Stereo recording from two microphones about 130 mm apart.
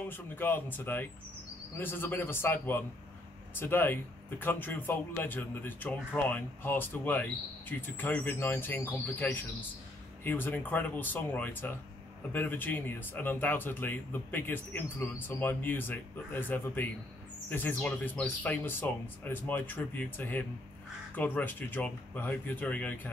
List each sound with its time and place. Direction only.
0.0 s speech: 15° left (ahead or behind)